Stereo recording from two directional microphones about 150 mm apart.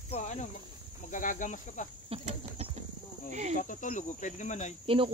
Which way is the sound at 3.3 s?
50° right (ahead or behind).